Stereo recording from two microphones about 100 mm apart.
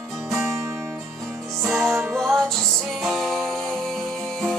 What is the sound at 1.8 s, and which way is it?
Music, 25° right (ahead or behind).